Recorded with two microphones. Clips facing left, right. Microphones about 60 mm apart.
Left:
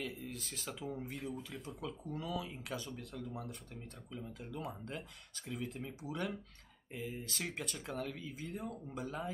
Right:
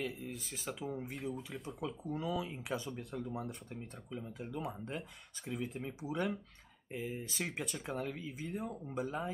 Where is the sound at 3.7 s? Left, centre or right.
Centre.